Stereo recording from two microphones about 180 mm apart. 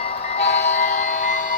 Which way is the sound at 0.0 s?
35° left (ahead or behind).